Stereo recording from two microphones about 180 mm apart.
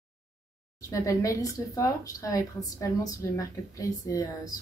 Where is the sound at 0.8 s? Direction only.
20° left (ahead or behind).